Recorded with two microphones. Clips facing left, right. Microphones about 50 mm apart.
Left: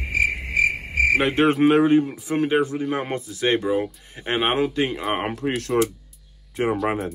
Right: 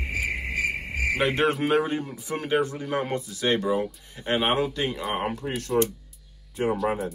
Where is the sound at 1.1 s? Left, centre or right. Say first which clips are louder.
Left 3 dB; left.